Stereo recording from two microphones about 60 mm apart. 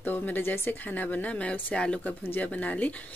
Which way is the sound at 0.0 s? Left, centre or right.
Left.